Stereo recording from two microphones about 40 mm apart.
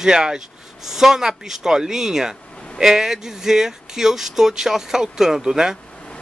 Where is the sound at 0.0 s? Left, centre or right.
Centre.